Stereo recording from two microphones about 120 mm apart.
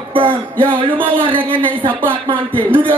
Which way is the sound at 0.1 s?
45° right (ahead or behind).